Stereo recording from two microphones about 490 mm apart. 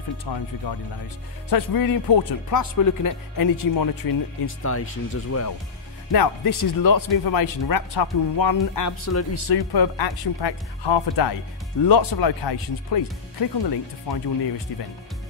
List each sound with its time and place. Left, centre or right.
0.2 s speech: left
4.6 s speech: left
6.1 s speech: left
9.3 s speech: left